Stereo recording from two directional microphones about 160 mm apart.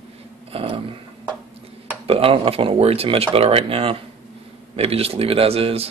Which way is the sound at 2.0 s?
35° right (ahead or behind).